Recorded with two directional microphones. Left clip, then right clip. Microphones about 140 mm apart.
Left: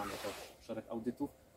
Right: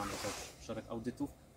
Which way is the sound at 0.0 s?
30° right (ahead or behind).